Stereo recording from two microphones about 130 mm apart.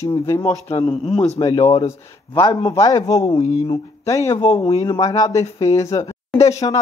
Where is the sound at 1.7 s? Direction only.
25° left (ahead or behind).